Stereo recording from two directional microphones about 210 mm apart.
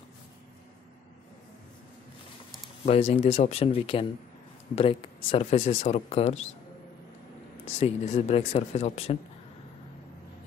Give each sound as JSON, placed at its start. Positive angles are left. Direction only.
{"t": 2.8, "sound": "speech", "side_deg": 30}
{"t": 7.8, "sound": "speech", "side_deg": 30}